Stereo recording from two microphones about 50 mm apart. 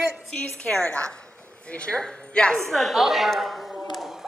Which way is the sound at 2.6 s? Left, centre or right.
Centre.